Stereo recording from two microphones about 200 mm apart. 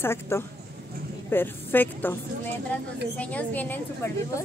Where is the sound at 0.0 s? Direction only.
10° left (ahead or behind).